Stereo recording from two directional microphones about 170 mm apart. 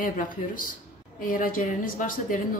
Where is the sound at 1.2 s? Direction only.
55° left (ahead or behind).